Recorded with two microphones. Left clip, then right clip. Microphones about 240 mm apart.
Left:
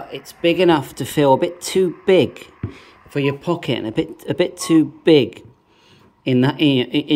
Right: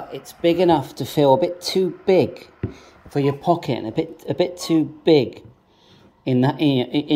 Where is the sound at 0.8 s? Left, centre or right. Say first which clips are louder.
Left 1 dB; left.